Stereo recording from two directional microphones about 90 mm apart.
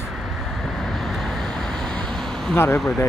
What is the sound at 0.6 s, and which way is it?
Vehicle, centre (ahead or behind).